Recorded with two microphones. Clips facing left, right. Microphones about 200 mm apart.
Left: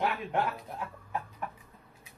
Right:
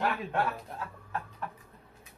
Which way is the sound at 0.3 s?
15° left (ahead or behind).